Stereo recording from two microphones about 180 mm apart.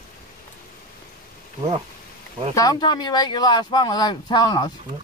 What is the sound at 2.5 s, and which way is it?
Speech, 25° left (ahead or behind).